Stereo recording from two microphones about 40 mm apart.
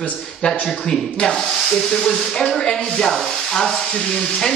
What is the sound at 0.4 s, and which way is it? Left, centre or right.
Speech, centre.